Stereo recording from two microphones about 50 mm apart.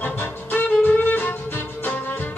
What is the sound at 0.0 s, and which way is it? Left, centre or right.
Music, left.